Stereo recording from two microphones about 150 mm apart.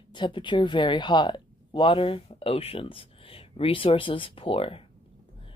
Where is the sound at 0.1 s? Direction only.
30° left (ahead or behind).